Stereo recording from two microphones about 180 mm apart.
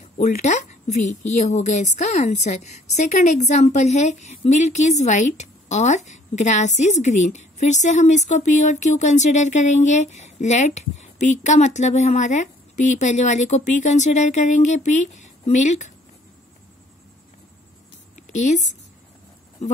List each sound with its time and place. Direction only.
0.2 s a woman's voice: 40° left (ahead or behind)
18.3 s a woman's voice: 40° left (ahead or behind)